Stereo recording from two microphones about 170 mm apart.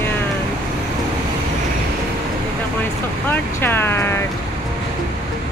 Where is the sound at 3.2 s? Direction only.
10° left (ahead or behind).